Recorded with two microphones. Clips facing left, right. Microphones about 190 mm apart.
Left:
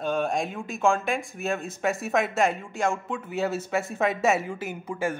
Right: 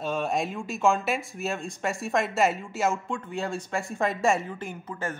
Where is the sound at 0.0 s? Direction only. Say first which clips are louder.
Left 1 dB; centre (ahead or behind).